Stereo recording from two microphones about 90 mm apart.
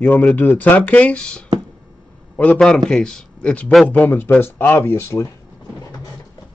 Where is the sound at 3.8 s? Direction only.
20° left (ahead or behind).